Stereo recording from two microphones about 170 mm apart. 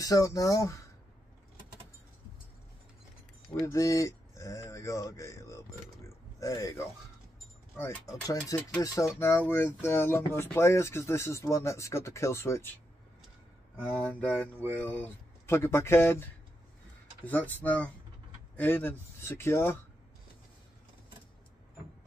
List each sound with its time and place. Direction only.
0.0 s speech: 20° left (ahead or behind)
3.6 s speech: 20° left (ahead or behind)
14.2 s speech: 10° left (ahead or behind)